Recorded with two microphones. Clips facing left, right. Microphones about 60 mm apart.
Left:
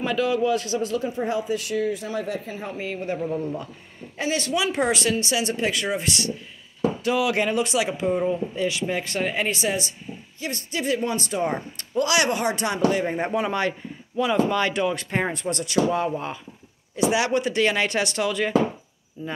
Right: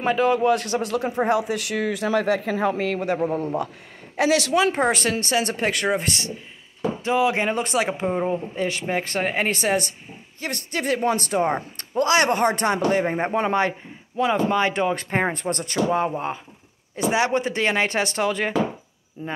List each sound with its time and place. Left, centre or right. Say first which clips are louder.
0.0 s a man's voice: right 3 dB; right
3.2 s speech: right 3 dB; right
4.2 s speech: right 6 dB; right
4.7 s a man's voice: right 1 dB; right
11.4 s a man's voice: right 2 dB; right
19.2 s speech: right 1 dB; right